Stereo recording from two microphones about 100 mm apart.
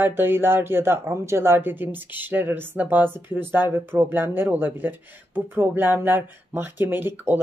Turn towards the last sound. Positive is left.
turn(degrees=-20)  # may be behind; listen again after turning